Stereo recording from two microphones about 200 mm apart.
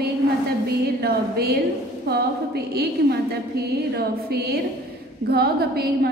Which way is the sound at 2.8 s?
55° right (ahead or behind).